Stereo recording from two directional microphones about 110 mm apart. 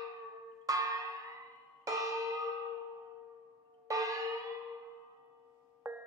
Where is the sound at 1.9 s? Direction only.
30° right (ahead or behind).